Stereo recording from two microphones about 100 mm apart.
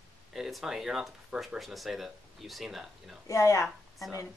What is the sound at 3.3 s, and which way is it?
Speech, 30° left (ahead or behind).